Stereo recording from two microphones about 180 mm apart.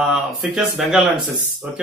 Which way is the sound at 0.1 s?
Centre (ahead or behind).